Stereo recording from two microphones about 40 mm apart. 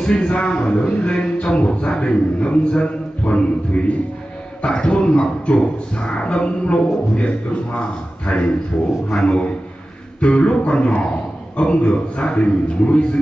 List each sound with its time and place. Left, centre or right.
0.0 s a man's voice: left